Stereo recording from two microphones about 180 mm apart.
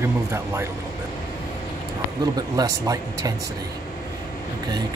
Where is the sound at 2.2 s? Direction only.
20° right (ahead or behind).